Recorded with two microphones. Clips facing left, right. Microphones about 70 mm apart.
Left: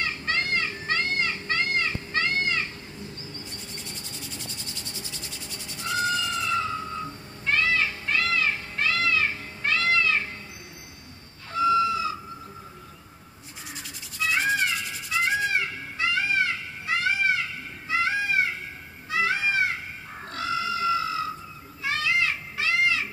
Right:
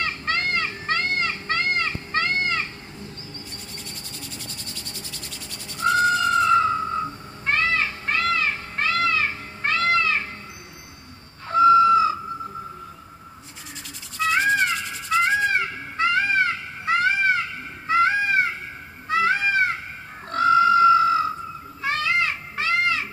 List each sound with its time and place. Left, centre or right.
0.0 s children playing: right
4.7 s insect: centre
5.8 s cat: right
11.4 s fowl: right
15.5 s music: right
20.2 s a sound: right
21.8 s children playing: right